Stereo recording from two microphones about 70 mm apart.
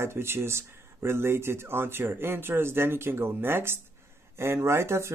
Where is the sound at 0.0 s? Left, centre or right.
Right.